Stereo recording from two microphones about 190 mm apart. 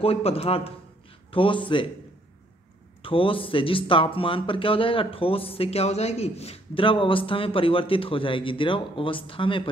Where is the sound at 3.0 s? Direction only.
30° left (ahead or behind).